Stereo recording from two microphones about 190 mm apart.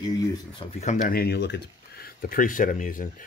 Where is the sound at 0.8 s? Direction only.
40° left (ahead or behind).